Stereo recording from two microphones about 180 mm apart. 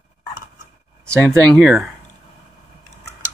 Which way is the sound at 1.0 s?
15° right (ahead or behind).